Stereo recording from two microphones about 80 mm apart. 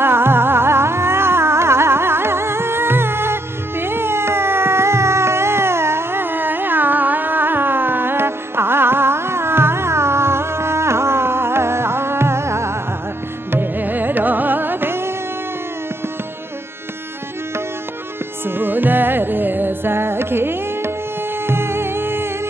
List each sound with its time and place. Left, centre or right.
0.0 s music: right
18.6 s music: right